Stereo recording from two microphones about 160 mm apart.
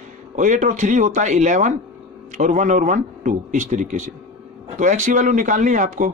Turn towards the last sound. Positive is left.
turn(degrees=-50)  # may be behind; listen again after turning